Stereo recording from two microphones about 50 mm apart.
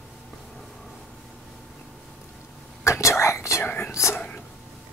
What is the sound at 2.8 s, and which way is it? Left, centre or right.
Whispering, left.